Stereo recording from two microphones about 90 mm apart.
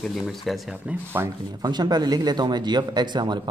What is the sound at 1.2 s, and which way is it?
Speech, 30° right (ahead or behind).